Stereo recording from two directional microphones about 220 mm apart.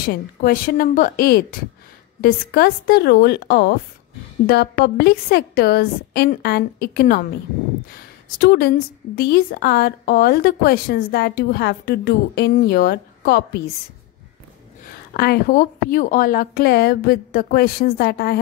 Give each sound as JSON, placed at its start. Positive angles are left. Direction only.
{"t": 0.0, "sound": "a woman's voice", "side_deg": 45}
{"t": 15.1, "sound": "a woman's voice", "side_deg": 45}